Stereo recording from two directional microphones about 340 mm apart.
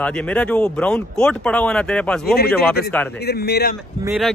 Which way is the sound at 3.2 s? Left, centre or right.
Left.